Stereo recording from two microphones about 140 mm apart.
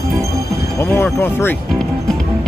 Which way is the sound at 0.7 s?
15° left (ahead or behind).